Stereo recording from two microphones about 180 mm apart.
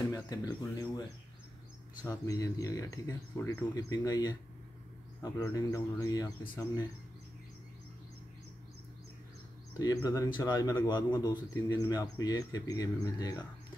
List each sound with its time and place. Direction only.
0.1 s speech: 20° left (ahead or behind)
2.0 s speech: 20° left (ahead or behind)
9.8 s speech: 20° left (ahead or behind)